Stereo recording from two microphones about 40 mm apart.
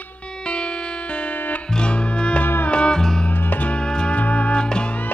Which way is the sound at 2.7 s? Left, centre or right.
Left.